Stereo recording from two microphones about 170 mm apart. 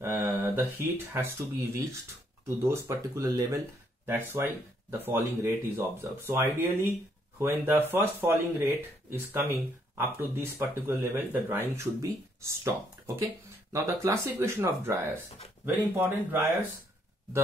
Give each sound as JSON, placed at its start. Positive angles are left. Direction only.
{"t": 0.0, "sound": "speech", "side_deg": -15}
{"t": 2.4, "sound": "speech", "side_deg": -15}